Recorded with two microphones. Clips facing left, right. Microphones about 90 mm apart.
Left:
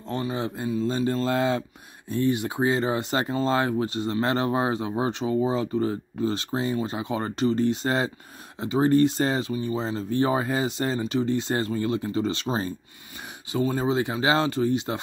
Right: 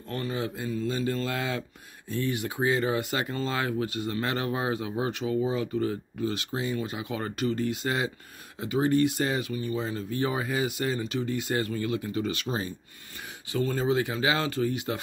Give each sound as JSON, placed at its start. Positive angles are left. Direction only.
{"t": 0.1, "sound": "speech", "side_deg": 20}
{"t": 2.0, "sound": "speech", "side_deg": 20}
{"t": 13.5, "sound": "speech", "side_deg": 20}